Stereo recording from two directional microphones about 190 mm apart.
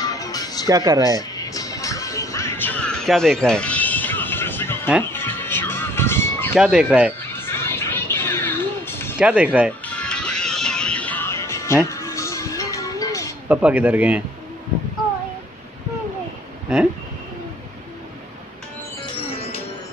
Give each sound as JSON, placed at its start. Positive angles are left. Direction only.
{"t": 0.0, "sound": "music", "side_deg": 20}
{"t": 0.7, "sound": "speech", "side_deg": -20}
{"t": 1.3, "sound": "music", "side_deg": 20}
{"t": 6.5, "sound": "speech", "side_deg": -5}
{"t": 7.2, "sound": "music", "side_deg": 10}
{"t": 9.2, "sound": "a man's voice", "side_deg": -5}
{"t": 9.8, "sound": "music", "side_deg": 5}
{"t": 13.5, "sound": "a man's voice", "side_deg": -10}
{"t": 19.0, "sound": "music", "side_deg": 30}